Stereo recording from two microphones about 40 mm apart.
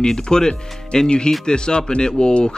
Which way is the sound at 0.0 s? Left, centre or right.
Centre.